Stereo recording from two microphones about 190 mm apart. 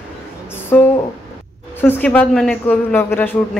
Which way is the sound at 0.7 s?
5° left (ahead or behind).